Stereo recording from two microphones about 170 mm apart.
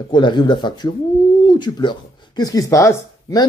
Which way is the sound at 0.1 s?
25° left (ahead or behind).